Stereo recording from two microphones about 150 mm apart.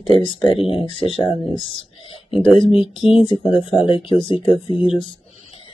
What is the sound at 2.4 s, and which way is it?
Speech, 35° left (ahead or behind).